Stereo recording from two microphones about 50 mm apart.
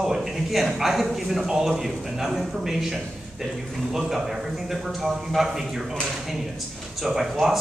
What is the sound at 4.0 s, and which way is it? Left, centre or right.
A man's voice, centre.